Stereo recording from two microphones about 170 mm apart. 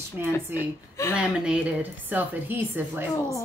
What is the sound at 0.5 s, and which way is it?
A woman's voice, 15° right (ahead or behind).